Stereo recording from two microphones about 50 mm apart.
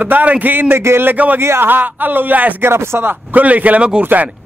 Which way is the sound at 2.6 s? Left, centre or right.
Right.